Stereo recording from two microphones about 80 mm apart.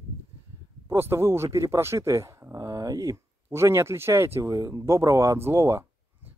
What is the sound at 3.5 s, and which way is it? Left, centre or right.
Speech, right.